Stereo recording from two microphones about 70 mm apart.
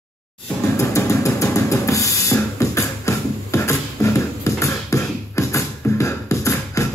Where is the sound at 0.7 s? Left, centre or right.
Left.